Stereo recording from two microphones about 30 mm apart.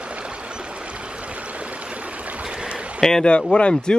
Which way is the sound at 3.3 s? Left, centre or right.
Left.